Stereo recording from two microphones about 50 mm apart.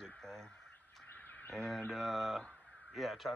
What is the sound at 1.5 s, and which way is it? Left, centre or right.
Speech, centre.